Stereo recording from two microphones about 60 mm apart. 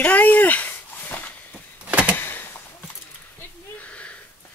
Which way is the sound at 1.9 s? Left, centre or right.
Right.